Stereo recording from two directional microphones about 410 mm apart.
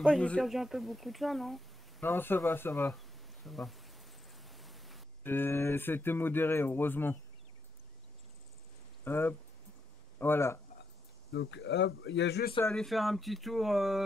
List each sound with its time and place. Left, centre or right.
0.0 s speech: centre
9.0 s speech: centre
11.3 s speech: left
12.5 s speech: centre